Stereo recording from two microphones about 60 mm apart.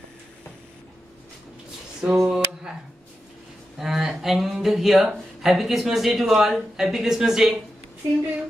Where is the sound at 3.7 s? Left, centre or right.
Centre.